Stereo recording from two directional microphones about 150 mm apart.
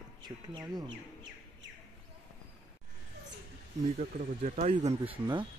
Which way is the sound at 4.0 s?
55° right (ahead or behind).